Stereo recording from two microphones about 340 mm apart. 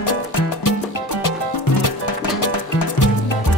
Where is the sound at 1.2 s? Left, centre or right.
Left.